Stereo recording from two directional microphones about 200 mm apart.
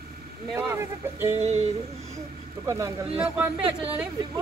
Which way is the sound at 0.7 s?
10° right (ahead or behind).